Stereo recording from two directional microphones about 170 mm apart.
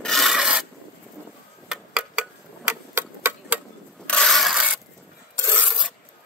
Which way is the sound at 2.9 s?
15° right (ahead or behind).